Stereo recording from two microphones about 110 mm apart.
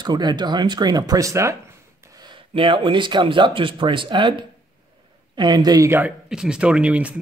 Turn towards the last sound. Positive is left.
turn(degrees=-10)  # may be behind; listen again after turning